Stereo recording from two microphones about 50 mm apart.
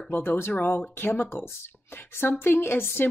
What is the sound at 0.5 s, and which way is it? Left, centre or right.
A woman's voice, left.